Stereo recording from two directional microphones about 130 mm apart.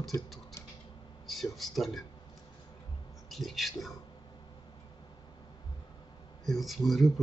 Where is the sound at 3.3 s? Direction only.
Centre (ahead or behind).